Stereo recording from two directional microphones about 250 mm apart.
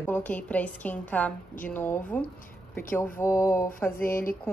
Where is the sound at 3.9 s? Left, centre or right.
Left.